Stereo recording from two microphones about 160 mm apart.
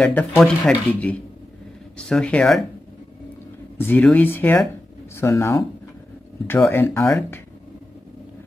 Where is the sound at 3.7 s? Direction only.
10° left (ahead or behind).